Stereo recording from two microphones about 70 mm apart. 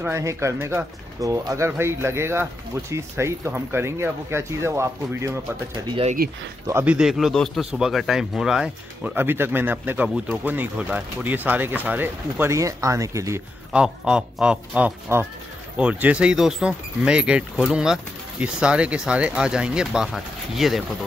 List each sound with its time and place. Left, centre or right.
0.1 s speech: right
1.2 s speech: right
6.9 s speech: centre
9.0 s speech: right
10.0 s speech: centre
10.3 s speech: right
12.4 s speech: right
13.7 s speech: centre